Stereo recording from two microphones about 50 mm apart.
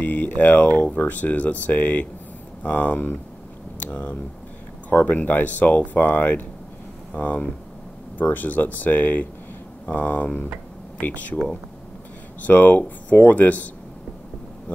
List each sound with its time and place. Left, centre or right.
0.0 s speech: left
4.9 s speech: left
12.4 s speech: left